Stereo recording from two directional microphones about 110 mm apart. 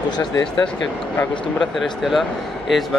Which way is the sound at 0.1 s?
40° left (ahead or behind).